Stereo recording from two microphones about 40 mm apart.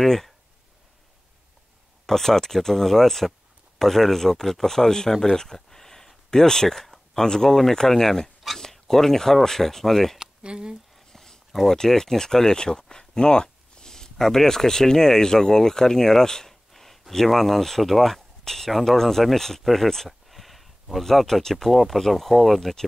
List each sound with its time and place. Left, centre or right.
0.0 s speech: centre
2.0 s speech: centre
10.1 s speech: right
11.1 s a sound: centre
11.5 s speech: centre